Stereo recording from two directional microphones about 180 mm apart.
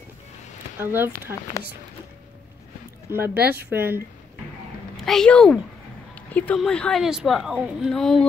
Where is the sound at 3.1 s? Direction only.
10° right (ahead or behind).